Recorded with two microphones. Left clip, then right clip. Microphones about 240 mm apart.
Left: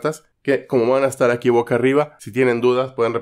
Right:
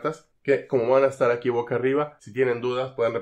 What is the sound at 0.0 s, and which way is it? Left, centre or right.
Speech, left.